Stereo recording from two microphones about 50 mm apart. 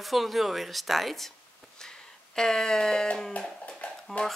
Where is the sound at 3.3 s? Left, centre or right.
Left.